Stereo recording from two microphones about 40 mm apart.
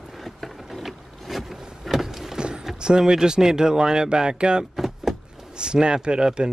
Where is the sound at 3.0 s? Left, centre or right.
Centre.